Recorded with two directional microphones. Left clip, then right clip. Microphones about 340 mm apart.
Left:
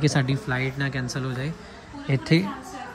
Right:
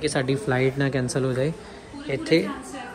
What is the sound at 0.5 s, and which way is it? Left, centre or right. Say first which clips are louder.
Speech: right 4 dB; centre.